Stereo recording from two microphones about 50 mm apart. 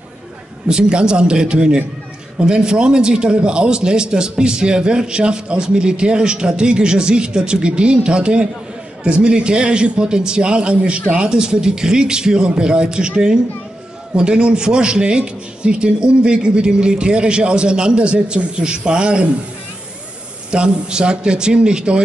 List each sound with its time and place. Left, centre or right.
0.7 s a man's voice: centre
20.5 s a man's voice: centre